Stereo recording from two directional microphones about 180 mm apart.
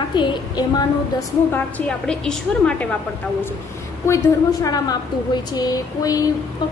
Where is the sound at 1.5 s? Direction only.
10° left (ahead or behind).